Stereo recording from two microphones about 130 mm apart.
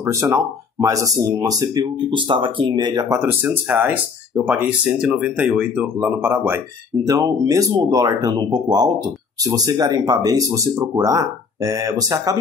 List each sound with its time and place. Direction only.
0.0 s speech: 20° right (ahead or behind)
3.3 s speech: 15° right (ahead or behind)